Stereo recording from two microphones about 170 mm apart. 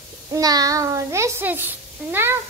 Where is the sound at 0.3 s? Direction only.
20° right (ahead or behind).